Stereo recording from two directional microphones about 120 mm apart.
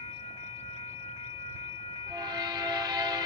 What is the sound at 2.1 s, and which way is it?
Train, 30° right (ahead or behind).